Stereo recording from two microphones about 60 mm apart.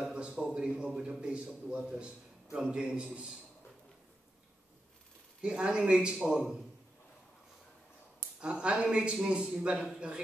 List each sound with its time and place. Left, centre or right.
0.1 s a sound: centre
0.5 s a man's voice: centre
5.4 s a man's voice: centre
8.4 s a man's voice: centre